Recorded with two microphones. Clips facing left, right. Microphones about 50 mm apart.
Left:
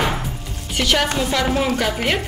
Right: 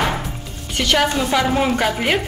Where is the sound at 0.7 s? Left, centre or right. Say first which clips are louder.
Right 2 dB; centre.